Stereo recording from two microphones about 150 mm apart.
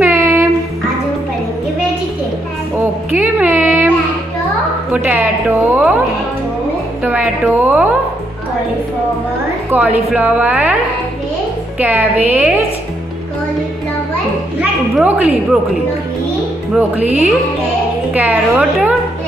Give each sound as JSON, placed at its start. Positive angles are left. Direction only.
{"t": 0.0, "sound": "a sound", "side_deg": -15}
{"t": 2.8, "sound": "a sound", "side_deg": -15}
{"t": 4.9, "sound": "a woman's voice", "side_deg": -10}
{"t": 7.0, "sound": "a woman's voice", "side_deg": -10}
{"t": 9.7, "sound": "a woman's voice", "side_deg": -10}
{"t": 11.8, "sound": "a woman's voice", "side_deg": -10}
{"t": 14.6, "sound": "a woman's voice", "side_deg": -10}
{"t": 16.7, "sound": "a woman's voice", "side_deg": -10}